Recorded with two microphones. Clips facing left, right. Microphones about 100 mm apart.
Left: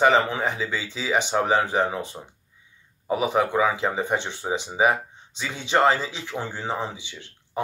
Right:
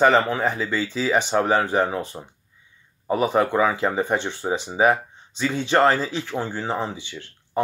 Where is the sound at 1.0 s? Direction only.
15° left (ahead or behind).